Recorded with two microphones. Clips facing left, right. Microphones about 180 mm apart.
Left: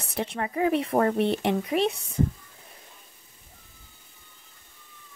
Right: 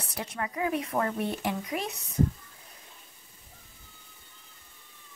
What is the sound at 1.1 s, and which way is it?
Speech, 70° left (ahead or behind).